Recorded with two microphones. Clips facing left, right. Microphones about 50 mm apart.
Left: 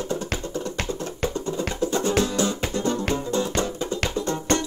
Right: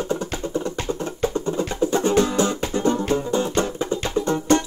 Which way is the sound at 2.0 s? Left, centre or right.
Right.